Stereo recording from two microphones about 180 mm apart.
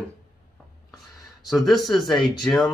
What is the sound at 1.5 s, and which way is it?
Speech, centre (ahead or behind).